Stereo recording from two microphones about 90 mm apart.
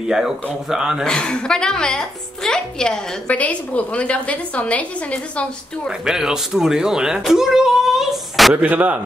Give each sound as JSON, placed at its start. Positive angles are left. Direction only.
{"t": 0.1, "sound": "speech", "side_deg": -5}
{"t": 1.0, "sound": "a woman's voice", "side_deg": 10}
{"t": 5.9, "sound": "speech", "side_deg": -5}
{"t": 7.2, "sound": "a sound", "side_deg": -5}
{"t": 8.5, "sound": "speech", "side_deg": -20}